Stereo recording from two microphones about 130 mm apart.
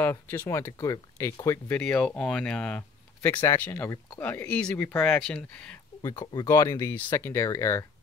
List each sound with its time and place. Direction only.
0.0 s speech: 15° left (ahead or behind)
1.8 s speech: 10° left (ahead or behind)
3.4 s speech: 20° left (ahead or behind)
6.0 s speech: 35° left (ahead or behind)
6.4 s speech: 20° left (ahead or behind)